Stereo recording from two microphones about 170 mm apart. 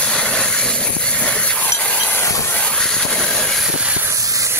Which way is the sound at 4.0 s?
20° right (ahead or behind).